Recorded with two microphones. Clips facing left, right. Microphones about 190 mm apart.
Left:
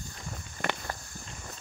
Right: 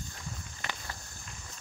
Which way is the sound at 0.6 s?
55° left (ahead or behind).